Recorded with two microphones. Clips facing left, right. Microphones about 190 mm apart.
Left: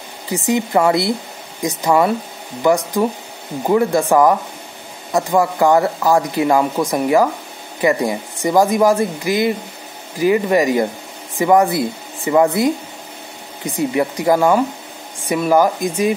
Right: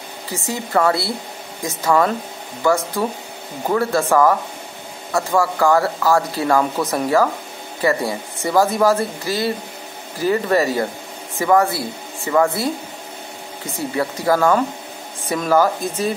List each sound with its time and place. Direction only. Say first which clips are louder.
0.5 s speech: left 3 dB; 20° left (ahead or behind)